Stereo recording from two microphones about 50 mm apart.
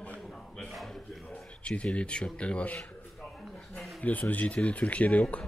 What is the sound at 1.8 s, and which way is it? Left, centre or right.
Speech, left.